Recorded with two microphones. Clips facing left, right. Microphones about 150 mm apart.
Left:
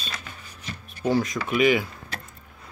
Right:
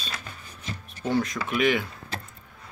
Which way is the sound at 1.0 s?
Centre (ahead or behind).